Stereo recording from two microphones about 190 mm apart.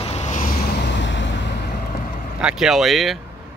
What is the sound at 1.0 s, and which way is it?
Vehicle, 70° left (ahead or behind).